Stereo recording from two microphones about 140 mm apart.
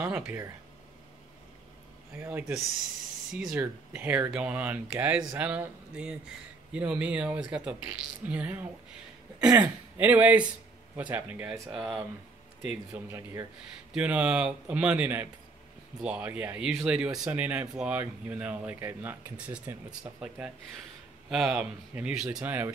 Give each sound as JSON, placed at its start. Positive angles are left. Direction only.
{"t": 0.0, "sound": "speech", "side_deg": -15}
{"t": 2.1, "sound": "speech", "side_deg": -15}
{"t": 11.7, "sound": "speech", "side_deg": -5}
{"t": 12.6, "sound": "speech", "side_deg": -15}